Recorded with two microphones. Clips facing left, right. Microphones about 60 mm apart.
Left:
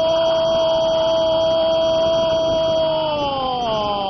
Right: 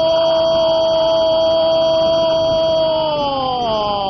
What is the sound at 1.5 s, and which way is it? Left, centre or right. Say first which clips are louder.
Hum: right 3 dB; right.